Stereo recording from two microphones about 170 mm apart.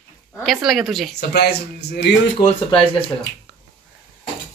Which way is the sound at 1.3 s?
75° left (ahead or behind).